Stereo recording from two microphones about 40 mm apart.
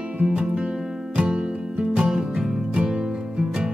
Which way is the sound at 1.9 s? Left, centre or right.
Right.